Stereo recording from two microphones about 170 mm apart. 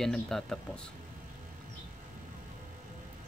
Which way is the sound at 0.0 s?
5° left (ahead or behind).